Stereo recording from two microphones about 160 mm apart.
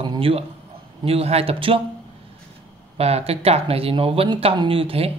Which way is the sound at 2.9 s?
40° right (ahead or behind).